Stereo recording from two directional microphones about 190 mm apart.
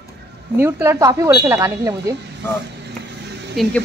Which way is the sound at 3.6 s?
Centre (ahead or behind).